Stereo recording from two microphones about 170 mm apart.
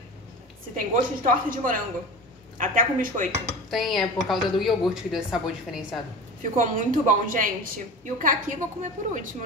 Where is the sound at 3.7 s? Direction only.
Centre (ahead or behind).